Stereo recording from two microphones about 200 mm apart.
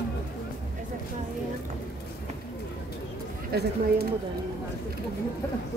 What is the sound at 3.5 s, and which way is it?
Speech, 50° right (ahead or behind).